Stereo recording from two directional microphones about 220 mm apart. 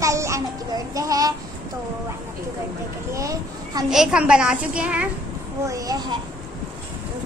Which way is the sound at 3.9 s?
5° right (ahead or behind).